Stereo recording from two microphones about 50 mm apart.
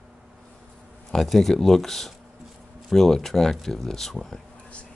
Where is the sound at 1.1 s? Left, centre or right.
Centre.